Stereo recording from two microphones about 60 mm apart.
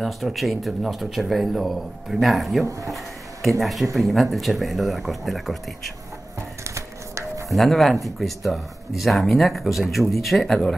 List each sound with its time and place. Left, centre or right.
0.0 s speech: centre
6.6 s a sound: right
7.4 s speech: centre